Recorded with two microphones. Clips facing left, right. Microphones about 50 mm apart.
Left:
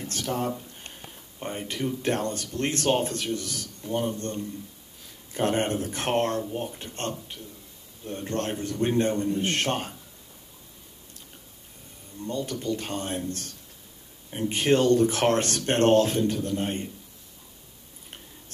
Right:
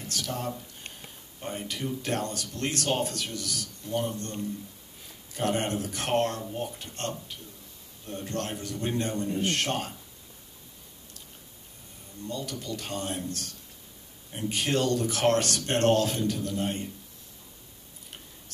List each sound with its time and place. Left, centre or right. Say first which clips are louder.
0.1 s speech: left 4 dB; left
1.4 s speech: left 3 dB; left
2.0 s a man's voice: left 4 dB; left
5.3 s a man's voice: left 3 dB; left
12.3 s a man's voice: left 6 dB; left